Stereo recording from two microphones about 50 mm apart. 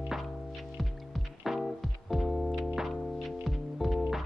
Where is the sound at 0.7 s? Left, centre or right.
Centre.